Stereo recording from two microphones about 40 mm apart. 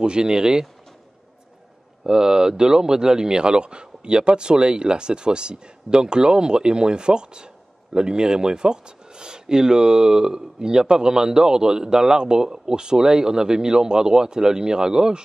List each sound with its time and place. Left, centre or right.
0.0 s speech: centre
2.0 s speech: centre